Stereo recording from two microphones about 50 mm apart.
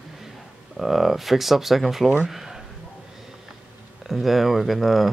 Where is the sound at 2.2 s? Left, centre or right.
Centre.